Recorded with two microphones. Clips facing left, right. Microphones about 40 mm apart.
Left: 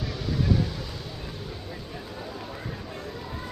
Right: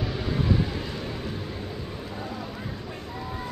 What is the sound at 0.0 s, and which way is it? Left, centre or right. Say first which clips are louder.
Vehicle: right 1 dB; right.